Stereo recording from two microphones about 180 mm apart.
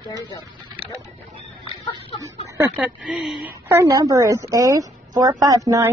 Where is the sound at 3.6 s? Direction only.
15° right (ahead or behind).